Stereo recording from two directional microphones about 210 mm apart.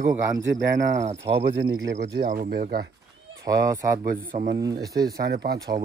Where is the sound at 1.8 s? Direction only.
60° right (ahead or behind).